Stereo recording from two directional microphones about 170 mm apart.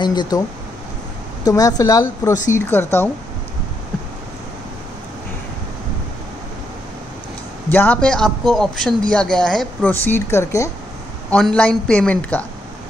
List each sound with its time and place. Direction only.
0.0 s a woman's voice: 25° left (ahead or behind)
1.4 s a woman's voice: 20° left (ahead or behind)
7.7 s speech: 10° left (ahead or behind)
11.2 s speech: 5° left (ahead or behind)